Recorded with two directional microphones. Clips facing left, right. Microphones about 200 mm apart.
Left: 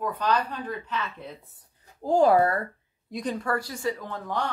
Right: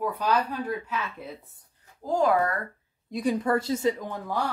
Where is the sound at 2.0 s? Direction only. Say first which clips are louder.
Left 4 dB; 30° left (ahead or behind).